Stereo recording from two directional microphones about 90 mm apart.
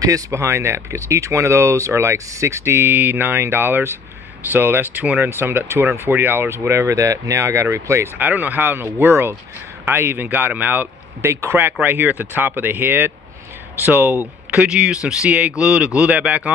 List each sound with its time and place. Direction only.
0.0 s speech: 35° right (ahead or behind); by 16.5 s 15° right (ahead or behind)